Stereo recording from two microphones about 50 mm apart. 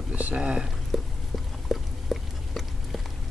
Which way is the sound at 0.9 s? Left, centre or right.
Centre.